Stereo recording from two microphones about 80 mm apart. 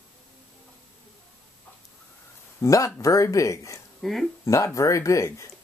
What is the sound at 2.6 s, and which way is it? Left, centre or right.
Speech, left.